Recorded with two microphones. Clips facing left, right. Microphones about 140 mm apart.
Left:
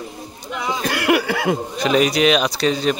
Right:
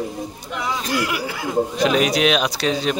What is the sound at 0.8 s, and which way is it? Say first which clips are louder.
Speech: left 8 dB; 65° left (ahead or behind).